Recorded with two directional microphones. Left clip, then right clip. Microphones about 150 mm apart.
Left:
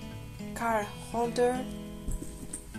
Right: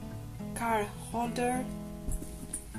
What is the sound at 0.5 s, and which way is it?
Speech, 20° left (ahead or behind).